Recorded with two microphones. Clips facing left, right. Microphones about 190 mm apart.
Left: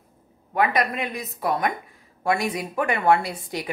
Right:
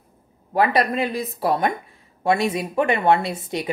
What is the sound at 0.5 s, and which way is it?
A woman's voice, 30° right (ahead or behind).